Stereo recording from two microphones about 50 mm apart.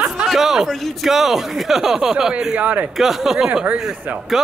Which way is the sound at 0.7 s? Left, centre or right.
Centre.